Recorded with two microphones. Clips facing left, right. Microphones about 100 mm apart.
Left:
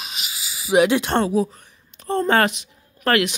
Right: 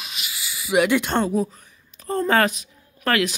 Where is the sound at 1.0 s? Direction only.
Centre (ahead or behind).